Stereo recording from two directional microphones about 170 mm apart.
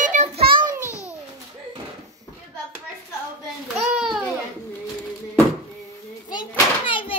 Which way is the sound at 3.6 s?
5° right (ahead or behind).